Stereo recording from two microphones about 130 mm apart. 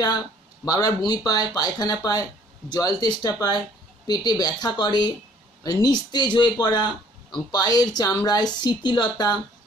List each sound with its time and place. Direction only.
0.7 s speech: 30° left (ahead or behind)